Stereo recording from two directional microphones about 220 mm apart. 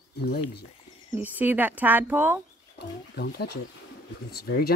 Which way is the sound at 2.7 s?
45° left (ahead or behind).